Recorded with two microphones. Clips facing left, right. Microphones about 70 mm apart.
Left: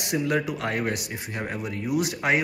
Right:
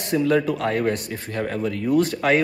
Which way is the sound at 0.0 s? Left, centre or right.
Centre.